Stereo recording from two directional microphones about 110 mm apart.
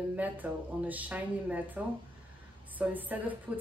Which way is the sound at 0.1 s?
15° right (ahead or behind).